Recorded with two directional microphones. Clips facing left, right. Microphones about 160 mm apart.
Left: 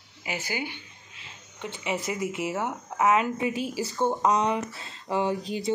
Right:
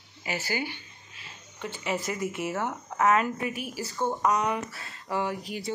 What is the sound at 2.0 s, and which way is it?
A woman's voice, 20° left (ahead or behind).